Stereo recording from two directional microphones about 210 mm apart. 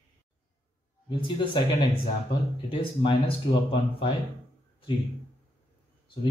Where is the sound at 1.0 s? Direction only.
25° left (ahead or behind).